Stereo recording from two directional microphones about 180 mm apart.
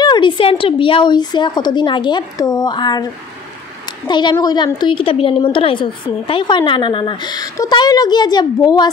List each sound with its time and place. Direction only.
0.0 s a woman's voice: 25° left (ahead or behind)
4.1 s a woman's voice: 25° left (ahead or behind)